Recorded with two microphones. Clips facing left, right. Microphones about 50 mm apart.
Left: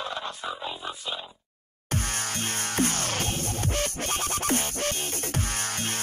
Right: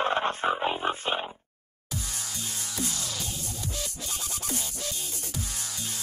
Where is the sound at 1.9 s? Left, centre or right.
Left.